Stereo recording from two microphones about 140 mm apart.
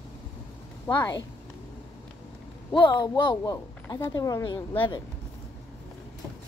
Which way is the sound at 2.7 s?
35° left (ahead or behind).